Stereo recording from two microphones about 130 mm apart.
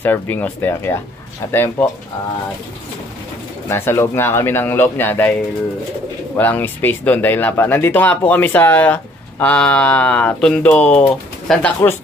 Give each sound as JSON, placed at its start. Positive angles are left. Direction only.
{"t": 0.0, "sound": "speech", "side_deg": 15}
{"t": 3.6, "sound": "speech", "side_deg": 20}
{"t": 6.3, "sound": "speech", "side_deg": 15}